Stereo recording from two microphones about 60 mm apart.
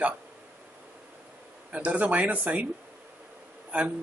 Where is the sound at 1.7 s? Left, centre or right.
Right.